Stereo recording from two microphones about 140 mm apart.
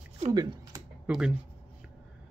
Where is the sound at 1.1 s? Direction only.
5° right (ahead or behind).